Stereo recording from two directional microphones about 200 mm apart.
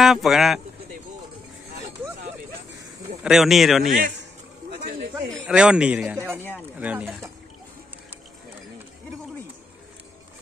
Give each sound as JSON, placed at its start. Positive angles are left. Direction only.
{"t": 0.0, "sound": "speech", "side_deg": 0}
{"t": 3.3, "sound": "speech", "side_deg": 0}
{"t": 3.8, "sound": "a man's voice", "side_deg": -40}
{"t": 5.3, "sound": "speech", "side_deg": -5}